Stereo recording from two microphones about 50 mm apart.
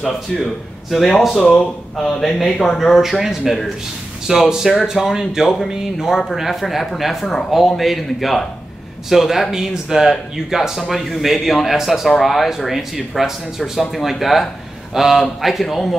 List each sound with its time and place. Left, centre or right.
0.0 s speech: centre
3.0 s speech: centre